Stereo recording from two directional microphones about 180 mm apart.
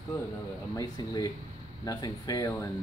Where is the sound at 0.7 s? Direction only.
20° left (ahead or behind).